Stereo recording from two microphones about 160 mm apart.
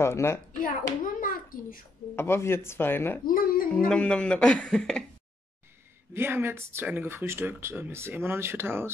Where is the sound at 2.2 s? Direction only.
15° left (ahead or behind).